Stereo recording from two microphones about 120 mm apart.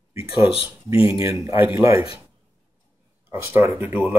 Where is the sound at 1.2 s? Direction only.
25° right (ahead or behind).